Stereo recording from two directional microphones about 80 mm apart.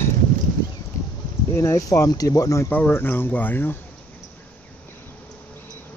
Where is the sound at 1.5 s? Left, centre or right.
Left.